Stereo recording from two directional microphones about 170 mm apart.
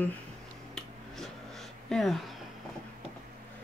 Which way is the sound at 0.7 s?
5° left (ahead or behind).